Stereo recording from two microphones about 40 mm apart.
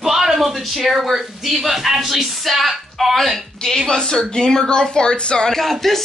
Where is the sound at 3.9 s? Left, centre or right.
Centre.